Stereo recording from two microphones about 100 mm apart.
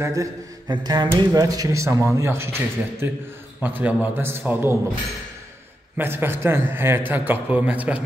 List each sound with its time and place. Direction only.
0.0 s a man's voice: 35° right (ahead or behind)
0.7 s a man's voice: 45° right (ahead or behind); by 4.7 s 25° right (ahead or behind)
5.9 s a man's voice: 20° right (ahead or behind)